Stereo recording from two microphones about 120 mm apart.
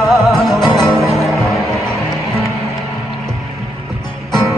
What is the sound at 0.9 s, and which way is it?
Music, centre (ahead or behind).